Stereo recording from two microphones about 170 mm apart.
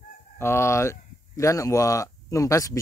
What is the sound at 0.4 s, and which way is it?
Speech, 15° left (ahead or behind).